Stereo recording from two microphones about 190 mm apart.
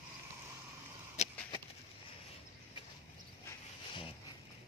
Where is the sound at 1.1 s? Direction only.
35° left (ahead or behind).